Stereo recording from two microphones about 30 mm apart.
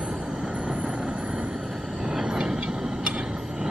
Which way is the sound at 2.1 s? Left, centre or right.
Right.